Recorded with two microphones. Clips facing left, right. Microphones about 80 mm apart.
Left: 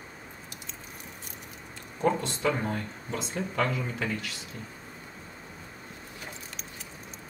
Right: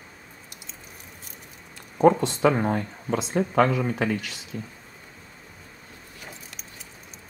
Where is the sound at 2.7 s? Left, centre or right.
Right.